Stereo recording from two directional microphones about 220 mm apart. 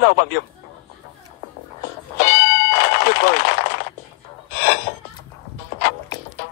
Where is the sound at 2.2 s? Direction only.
45° left (ahead or behind).